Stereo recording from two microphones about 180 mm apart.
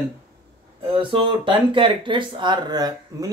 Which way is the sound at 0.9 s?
30° right (ahead or behind).